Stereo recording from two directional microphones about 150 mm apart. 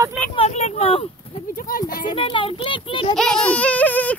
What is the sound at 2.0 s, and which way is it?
A child's voice, 35° left (ahead or behind).